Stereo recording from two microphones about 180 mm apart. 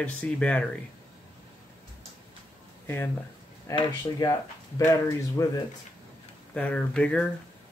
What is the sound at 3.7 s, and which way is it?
Speech, 15° left (ahead or behind).